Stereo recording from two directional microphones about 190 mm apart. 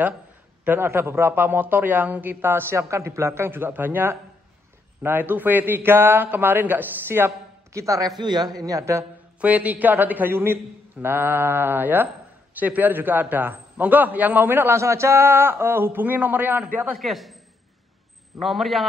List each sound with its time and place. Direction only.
0.7 s a man's voice: 10° right (ahead or behind)
18.4 s a man's voice: centre (ahead or behind)